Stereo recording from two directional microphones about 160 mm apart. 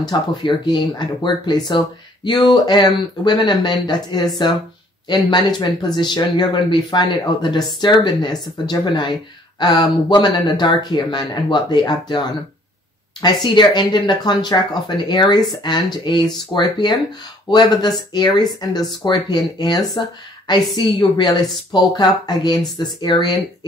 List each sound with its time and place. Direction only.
0.0 s speech: 30° left (ahead or behind)